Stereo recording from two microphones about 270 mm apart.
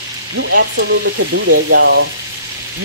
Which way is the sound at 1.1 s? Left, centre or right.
Right.